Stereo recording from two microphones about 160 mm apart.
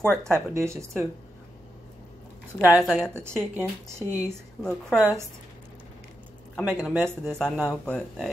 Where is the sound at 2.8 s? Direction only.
Centre (ahead or behind).